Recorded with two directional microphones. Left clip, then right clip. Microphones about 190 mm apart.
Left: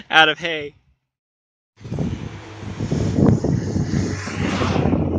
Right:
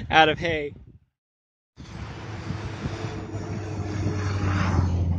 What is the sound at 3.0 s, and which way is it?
Vehicle, 45° right (ahead or behind).